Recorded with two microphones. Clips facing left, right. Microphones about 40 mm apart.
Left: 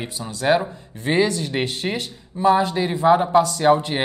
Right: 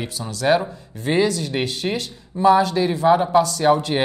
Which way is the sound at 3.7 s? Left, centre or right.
Centre.